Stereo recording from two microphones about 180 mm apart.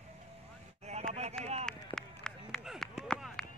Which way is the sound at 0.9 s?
40° right (ahead or behind).